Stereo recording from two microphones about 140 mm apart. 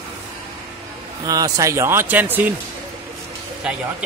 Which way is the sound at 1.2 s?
25° right (ahead or behind).